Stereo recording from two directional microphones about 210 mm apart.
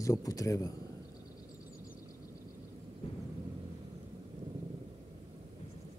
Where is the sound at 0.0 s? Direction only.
15° left (ahead or behind).